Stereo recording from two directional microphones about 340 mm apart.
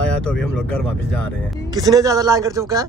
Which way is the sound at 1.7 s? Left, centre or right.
Centre.